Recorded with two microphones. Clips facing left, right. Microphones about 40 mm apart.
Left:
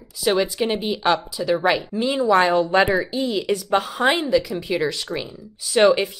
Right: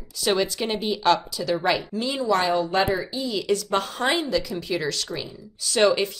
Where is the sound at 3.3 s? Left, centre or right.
Centre.